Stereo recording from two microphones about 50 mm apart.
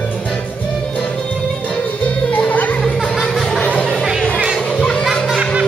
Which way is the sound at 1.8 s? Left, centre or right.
Left.